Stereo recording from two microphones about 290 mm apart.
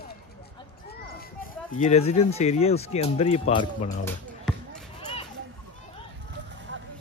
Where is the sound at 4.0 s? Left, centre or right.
Centre.